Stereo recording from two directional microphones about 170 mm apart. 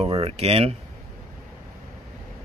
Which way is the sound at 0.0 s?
35° right (ahead or behind).